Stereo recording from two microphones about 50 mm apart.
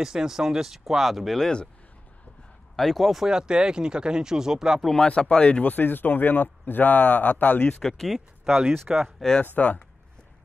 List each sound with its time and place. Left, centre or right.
0.0 s speech: centre
2.7 s speech: centre
3.3 s speech: centre
5.0 s speech: centre
5.7 s a man's voice: left
7.8 s speech: centre
8.8 s speech: centre
9.6 s speech: left